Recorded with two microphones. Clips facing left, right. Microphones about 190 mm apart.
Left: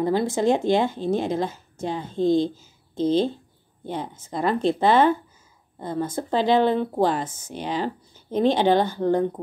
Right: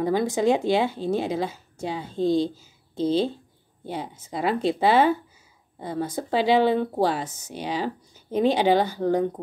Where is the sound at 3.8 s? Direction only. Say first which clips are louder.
Left 2 dB; 10° right (ahead or behind).